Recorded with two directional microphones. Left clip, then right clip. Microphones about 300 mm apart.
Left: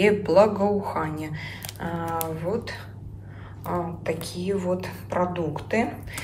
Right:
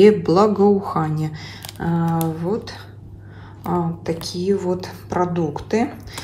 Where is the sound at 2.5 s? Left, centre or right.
Centre.